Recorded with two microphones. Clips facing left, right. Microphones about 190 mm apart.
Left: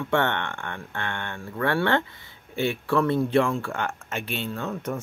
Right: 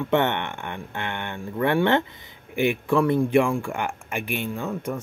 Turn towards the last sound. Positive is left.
turn(degrees=-10)  # may be behind; listen again after turning